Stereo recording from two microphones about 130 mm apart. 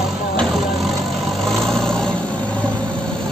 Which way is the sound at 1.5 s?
5° left (ahead or behind).